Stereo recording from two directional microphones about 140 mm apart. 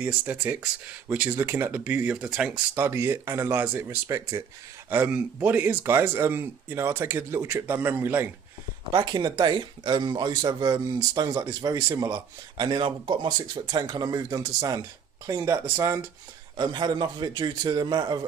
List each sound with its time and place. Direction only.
0.0 s speech: 15° right (ahead or behind)
2.7 s speech: 20° right (ahead or behind)
8.9 s speech: 30° right (ahead or behind)